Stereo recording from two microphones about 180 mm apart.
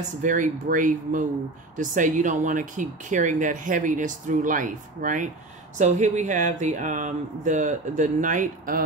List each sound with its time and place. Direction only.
0.2 s speech: 45° right (ahead or behind)